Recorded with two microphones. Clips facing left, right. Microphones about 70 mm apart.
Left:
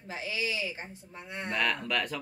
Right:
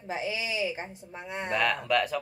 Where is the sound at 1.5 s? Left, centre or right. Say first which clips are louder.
Right 4 dB; centre.